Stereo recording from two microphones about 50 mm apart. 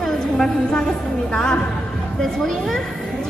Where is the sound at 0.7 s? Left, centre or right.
Centre.